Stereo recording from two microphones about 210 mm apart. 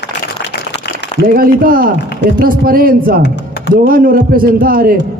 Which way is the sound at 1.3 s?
45° right (ahead or behind).